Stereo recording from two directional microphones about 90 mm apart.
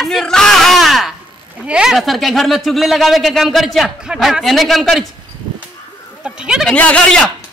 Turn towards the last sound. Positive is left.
turn(degrees=10)  # may be behind; listen again after turning